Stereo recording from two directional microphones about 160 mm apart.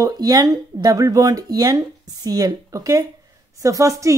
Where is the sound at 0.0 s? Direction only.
20° right (ahead or behind).